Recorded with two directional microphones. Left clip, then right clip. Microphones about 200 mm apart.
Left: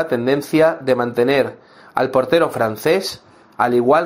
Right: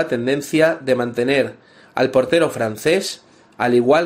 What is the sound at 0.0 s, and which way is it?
Speech, 5° right (ahead or behind).